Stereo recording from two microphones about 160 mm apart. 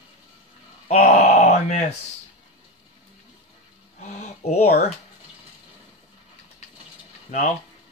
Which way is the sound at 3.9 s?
45° left (ahead or behind).